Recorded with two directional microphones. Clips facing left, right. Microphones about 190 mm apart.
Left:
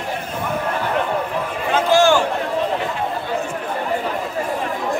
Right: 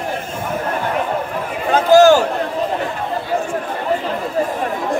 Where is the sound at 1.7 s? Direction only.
40° right (ahead or behind).